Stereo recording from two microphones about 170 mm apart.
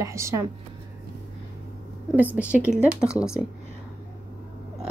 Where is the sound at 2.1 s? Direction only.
10° right (ahead or behind).